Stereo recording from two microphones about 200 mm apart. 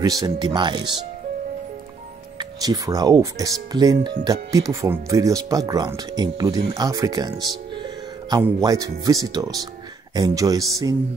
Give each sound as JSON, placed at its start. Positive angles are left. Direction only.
{"t": 0.0, "sound": "speech", "side_deg": -20}
{"t": 2.3, "sound": "speech", "side_deg": -20}